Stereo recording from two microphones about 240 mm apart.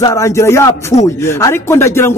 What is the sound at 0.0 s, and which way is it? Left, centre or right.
Speech, centre.